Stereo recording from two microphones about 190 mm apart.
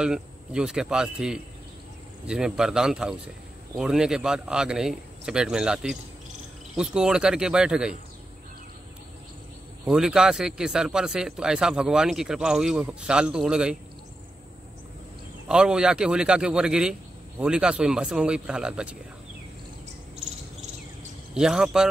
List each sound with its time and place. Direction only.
0.0 s speech: 5° right (ahead or behind)
9.8 s speech: 5° right (ahead or behind)
15.4 s speech: 5° right (ahead or behind)
20.2 s cricket: 35° right (ahead or behind)
21.4 s speech: centre (ahead or behind)